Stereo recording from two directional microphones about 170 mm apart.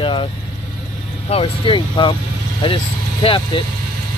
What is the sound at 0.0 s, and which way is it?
Vehicle, 30° left (ahead or behind).